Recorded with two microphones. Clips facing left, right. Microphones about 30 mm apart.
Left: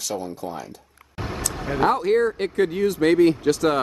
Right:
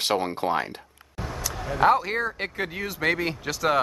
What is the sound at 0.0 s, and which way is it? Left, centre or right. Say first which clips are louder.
Speech: right 4 dB; right.